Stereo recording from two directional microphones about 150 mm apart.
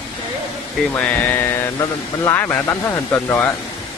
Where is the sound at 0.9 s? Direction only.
10° left (ahead or behind).